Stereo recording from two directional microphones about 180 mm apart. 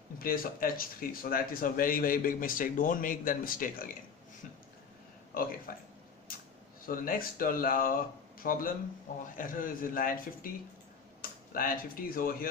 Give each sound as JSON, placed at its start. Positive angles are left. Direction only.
{"t": 0.2, "sound": "speech", "side_deg": 50}
{"t": 5.3, "sound": "speech", "side_deg": 55}
{"t": 6.9, "sound": "speech", "side_deg": 50}
{"t": 11.1, "sound": "a sound", "side_deg": 50}
{"t": 12.2, "sound": "speech", "side_deg": 50}